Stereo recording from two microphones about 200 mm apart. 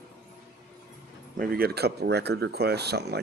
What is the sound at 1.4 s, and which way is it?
Speech, 50° right (ahead or behind).